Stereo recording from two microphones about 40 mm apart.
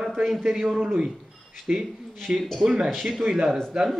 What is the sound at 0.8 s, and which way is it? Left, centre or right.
Speech, right.